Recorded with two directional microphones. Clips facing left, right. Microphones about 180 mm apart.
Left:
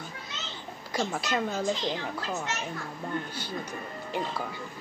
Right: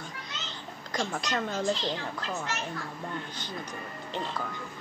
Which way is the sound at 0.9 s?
5° left (ahead or behind).